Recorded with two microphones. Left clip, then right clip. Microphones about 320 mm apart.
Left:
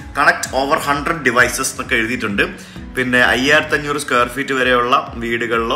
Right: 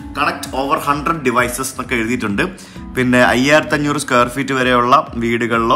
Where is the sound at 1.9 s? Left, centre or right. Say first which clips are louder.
Left 1 dB; right.